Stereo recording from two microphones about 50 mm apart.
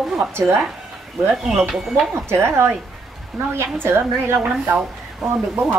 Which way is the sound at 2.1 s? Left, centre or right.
Right.